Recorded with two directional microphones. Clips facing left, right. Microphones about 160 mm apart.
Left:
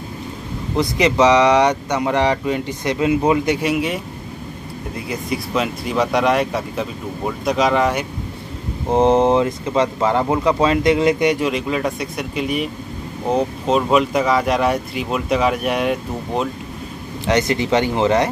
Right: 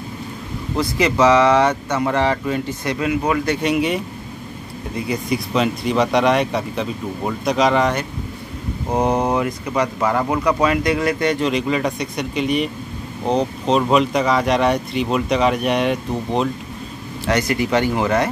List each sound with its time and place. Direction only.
0.7 s speech: 20° left (ahead or behind)
3.6 s speech: centre (ahead or behind)
8.9 s speech: 25° left (ahead or behind); by 16.4 s 5° left (ahead or behind)
17.3 s speech: 20° left (ahead or behind)